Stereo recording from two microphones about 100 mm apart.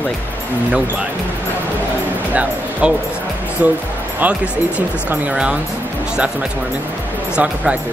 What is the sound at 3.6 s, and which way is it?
Speech, 15° right (ahead or behind).